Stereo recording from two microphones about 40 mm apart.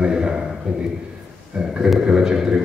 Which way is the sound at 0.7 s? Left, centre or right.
Right.